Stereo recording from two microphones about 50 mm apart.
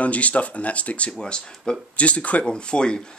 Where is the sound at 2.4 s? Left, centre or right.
Centre.